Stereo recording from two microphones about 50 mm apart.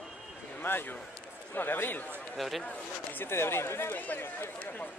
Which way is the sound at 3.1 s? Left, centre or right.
Left.